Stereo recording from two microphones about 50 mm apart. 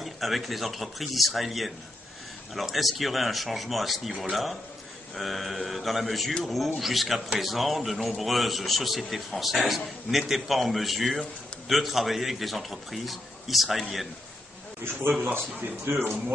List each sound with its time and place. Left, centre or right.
0.0 s a man's voice: centre
15.8 s speech: right